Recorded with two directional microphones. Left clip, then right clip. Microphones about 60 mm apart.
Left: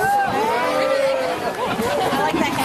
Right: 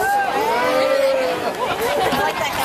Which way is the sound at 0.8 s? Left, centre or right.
Left.